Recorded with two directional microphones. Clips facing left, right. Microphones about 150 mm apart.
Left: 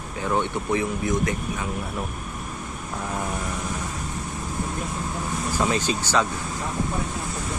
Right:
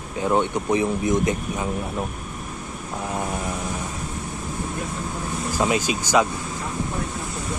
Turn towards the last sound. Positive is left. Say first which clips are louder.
# right 3 dB
turn(degrees=-10)  # may be behind; listen again after turning